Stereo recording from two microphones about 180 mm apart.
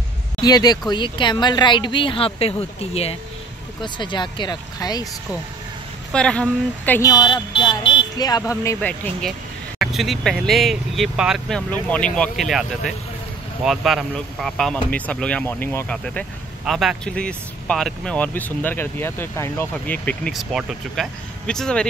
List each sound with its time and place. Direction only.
0.4 s speech: 20° left (ahead or behind)
6.1 s speech: 5° left (ahead or behind)
7.0 s speech: 20° left (ahead or behind); by 21.8 s 5° left (ahead or behind)